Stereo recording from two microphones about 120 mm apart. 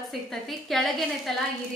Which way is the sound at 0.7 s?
Centre (ahead or behind).